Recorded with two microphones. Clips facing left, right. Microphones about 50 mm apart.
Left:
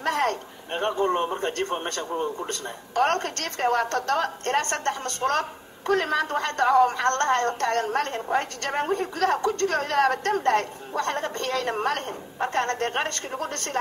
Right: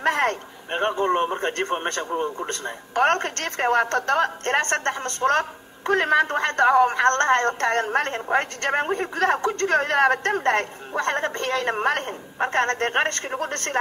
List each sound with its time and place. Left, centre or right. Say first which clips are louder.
0.0 s a woman's voice: right 3 dB; right